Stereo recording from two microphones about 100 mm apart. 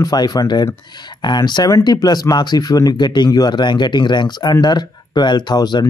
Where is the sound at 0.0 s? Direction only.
45° left (ahead or behind).